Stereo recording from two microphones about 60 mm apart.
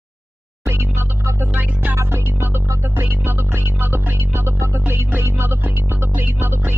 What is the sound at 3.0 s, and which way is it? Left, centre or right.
Music, right.